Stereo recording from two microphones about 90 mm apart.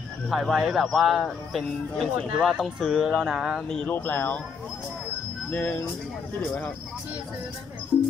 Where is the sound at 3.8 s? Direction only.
20° left (ahead or behind).